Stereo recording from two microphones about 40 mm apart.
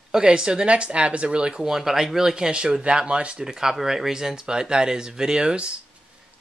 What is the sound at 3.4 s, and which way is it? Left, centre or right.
Speech, centre.